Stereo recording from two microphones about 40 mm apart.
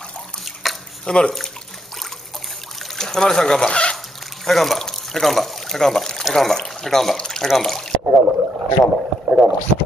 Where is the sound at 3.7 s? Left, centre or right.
Left.